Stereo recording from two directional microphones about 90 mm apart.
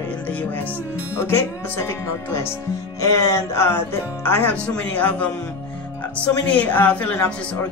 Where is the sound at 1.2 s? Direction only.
30° left (ahead or behind).